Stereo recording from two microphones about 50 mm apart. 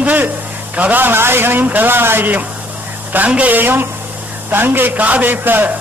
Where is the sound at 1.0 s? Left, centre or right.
Right.